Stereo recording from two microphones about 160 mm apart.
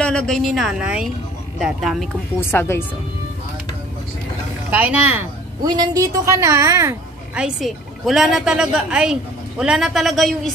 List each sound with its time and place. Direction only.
0.0 s a woman's voice: 5° left (ahead or behind)
2.5 s speech: 15° left (ahead or behind)
4.6 s speech: 10° right (ahead or behind)
5.6 s a woman's voice: 25° right (ahead or behind)
7.3 s a woman's voice: 5° right (ahead or behind)